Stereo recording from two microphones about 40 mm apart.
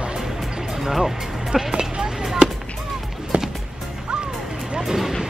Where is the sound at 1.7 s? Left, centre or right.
Centre.